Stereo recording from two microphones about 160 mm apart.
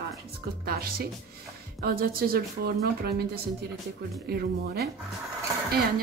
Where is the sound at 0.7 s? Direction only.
75° right (ahead or behind).